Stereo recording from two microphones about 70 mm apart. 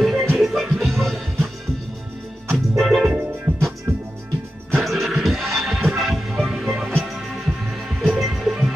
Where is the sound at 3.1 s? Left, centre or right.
Right.